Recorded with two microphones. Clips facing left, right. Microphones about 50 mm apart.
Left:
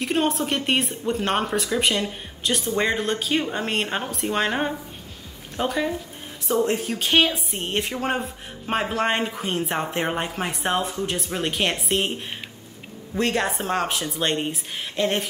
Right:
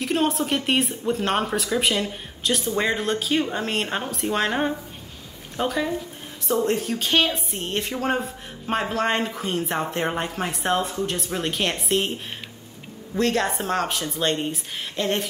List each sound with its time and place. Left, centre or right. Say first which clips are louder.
0.0 s speech: even; centre